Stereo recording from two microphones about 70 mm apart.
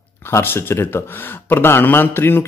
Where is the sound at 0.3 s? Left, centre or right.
Left.